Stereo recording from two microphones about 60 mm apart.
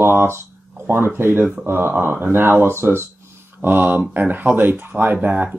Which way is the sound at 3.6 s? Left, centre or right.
Right.